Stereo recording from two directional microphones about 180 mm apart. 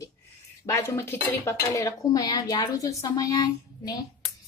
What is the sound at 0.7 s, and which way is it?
A woman's voice, 15° left (ahead or behind).